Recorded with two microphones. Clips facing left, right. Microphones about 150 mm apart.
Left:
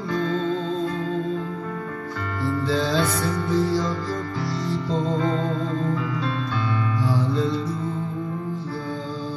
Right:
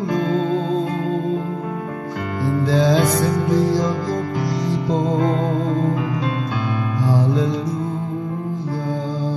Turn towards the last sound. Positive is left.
turn(degrees=-15)  # may be behind; listen again after turning